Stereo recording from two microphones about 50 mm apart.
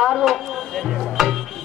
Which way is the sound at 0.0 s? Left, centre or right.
Centre.